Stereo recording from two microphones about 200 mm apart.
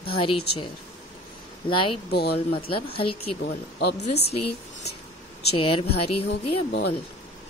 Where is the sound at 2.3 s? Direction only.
25° left (ahead or behind).